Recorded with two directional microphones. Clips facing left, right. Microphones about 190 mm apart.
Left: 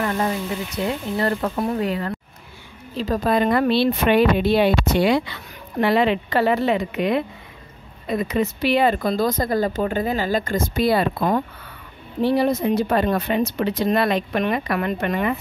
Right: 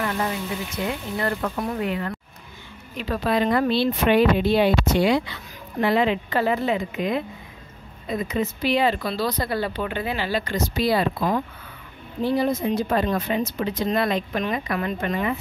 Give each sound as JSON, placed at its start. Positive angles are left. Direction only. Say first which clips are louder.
{"t": 0.8, "sound": "a woman's voice", "louder": "left 4 dB", "side_deg": 30}
{"t": 12.2, "sound": "a woman's voice", "louder": "left 3 dB", "side_deg": 70}